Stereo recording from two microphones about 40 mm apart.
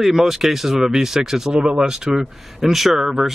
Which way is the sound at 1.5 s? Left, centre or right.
Right.